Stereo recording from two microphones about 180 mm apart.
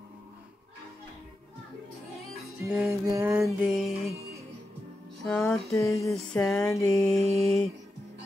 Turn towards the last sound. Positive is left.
turn(degrees=0)  # may be behind; listen again after turning